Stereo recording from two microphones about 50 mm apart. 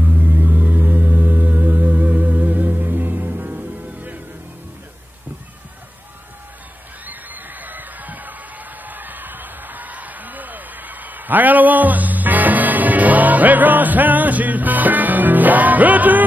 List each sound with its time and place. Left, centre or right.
0.0 s music: right
7.1 s crowd: right
8.8 s music: right